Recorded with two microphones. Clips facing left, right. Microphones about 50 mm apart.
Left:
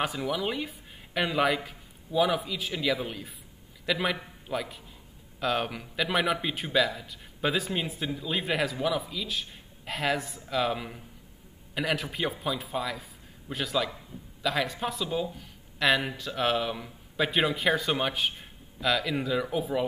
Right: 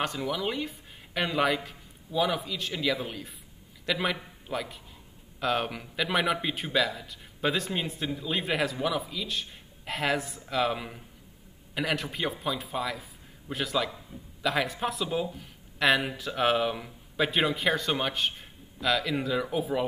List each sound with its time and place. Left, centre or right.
0.0 s a man's voice: centre